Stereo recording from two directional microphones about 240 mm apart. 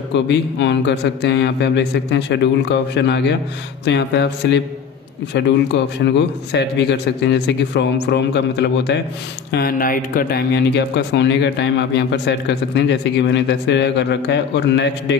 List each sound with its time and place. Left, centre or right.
0.1 s speech: left